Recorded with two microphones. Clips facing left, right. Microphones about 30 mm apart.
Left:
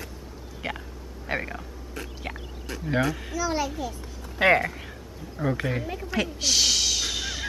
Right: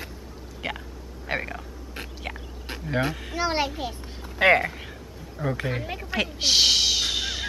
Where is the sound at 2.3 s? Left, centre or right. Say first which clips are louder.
Right 1 dB; centre.